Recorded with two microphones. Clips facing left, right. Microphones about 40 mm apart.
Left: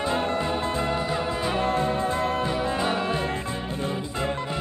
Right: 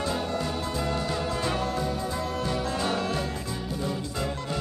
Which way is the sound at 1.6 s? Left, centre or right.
Left.